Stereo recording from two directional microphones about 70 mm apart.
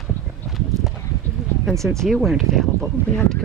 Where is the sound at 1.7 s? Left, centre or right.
Centre.